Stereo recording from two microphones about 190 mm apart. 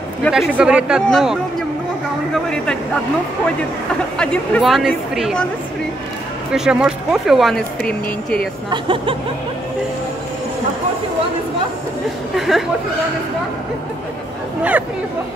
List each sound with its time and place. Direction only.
0.2 s speech: centre (ahead or behind)
2.5 s speech: 5° left (ahead or behind)
4.2 s speech: 5° left (ahead or behind)
6.5 s speech: 5° right (ahead or behind)
8.6 s speech: 25° right (ahead or behind)
12.4 s speech: centre (ahead or behind)